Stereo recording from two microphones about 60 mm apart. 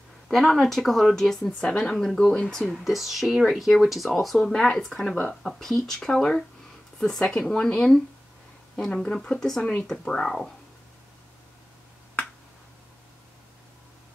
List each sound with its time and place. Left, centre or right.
0.3 s speech: centre
9.8 s speech: centre